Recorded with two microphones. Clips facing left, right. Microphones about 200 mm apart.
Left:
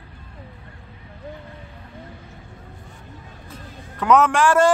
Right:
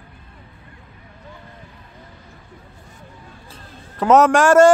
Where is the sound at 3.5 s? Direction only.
40° right (ahead or behind).